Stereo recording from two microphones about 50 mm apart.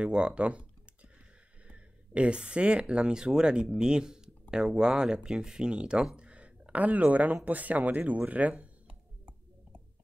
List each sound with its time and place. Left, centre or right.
0.0 s typing: right
1.7 s speech: right
6.1 s a sound: right
7.4 s speech: right